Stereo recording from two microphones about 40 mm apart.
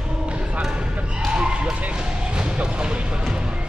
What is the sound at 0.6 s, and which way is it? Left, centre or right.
Basketball bounce, centre.